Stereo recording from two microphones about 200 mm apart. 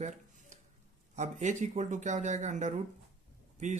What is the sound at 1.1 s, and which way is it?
Speech, 35° right (ahead or behind).